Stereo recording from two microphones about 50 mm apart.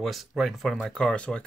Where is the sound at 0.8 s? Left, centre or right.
Centre.